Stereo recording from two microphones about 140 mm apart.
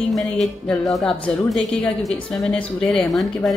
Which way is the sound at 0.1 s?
Centre (ahead or behind).